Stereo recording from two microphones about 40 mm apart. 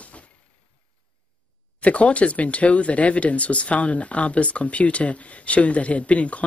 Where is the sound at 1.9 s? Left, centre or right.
Left.